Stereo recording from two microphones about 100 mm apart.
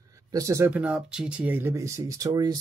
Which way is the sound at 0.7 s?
10° right (ahead or behind).